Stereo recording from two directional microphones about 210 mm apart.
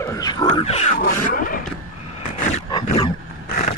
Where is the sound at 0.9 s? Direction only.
45° left (ahead or behind).